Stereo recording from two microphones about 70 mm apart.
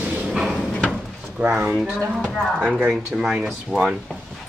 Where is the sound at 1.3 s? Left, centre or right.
Centre.